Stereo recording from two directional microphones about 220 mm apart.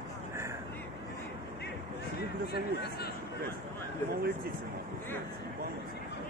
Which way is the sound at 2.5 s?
45° left (ahead or behind).